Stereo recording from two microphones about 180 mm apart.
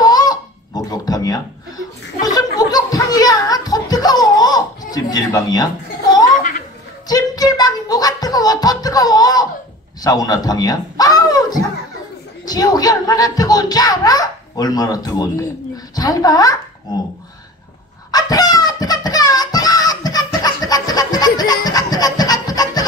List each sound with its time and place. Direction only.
0.0 s honk: 20° left (ahead or behind)
2.2 s chuckle: 20° left (ahead or behind)
7.1 s music: 20° left (ahead or behind)
10.0 s a man's voice: 20° left (ahead or behind)
18.1 s a sound: 20° left (ahead or behind)